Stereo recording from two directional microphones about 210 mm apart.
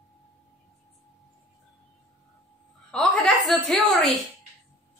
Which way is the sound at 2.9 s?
Centre (ahead or behind).